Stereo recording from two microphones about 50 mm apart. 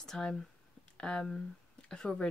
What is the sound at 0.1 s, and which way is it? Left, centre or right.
Speech, centre.